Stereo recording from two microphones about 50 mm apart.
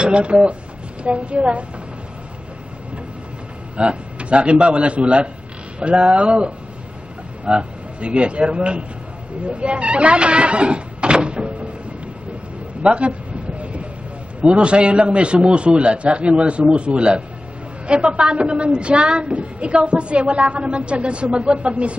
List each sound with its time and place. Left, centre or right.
0.0 s a woman's voice: right
3.7 s a woman's voice: right
12.8 s a sound: right
14.4 s a woman's voice: right